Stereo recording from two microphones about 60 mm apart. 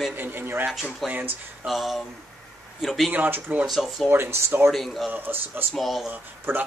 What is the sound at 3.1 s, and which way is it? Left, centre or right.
Speech, right.